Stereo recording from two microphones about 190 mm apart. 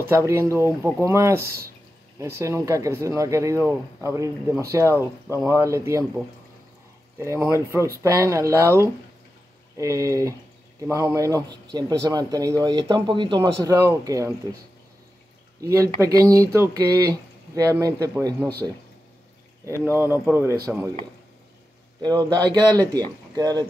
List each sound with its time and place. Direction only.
0.1 s speech: 15° right (ahead or behind)
7.2 s speech: 15° right (ahead or behind)
15.6 s speech: 15° right (ahead or behind)
19.6 s speech: 15° right (ahead or behind)
22.0 s speech: 20° right (ahead or behind)